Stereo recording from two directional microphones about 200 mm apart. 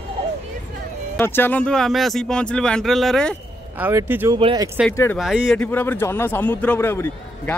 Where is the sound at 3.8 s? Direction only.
10° right (ahead or behind).